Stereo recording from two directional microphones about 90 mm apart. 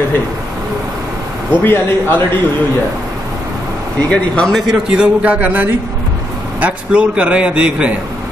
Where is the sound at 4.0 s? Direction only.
15° left (ahead or behind).